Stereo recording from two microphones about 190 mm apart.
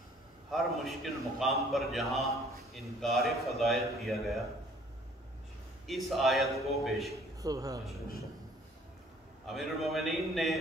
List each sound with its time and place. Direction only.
0.5 s a man's voice: centre (ahead or behind)
5.9 s a man's voice: centre (ahead or behind)
7.4 s speech: 20° right (ahead or behind)
9.5 s a man's voice: centre (ahead or behind)